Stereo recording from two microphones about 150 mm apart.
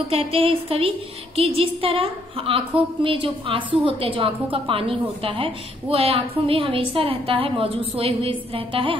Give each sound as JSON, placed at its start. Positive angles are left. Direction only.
{"t": 0.1, "sound": "speech", "side_deg": -40}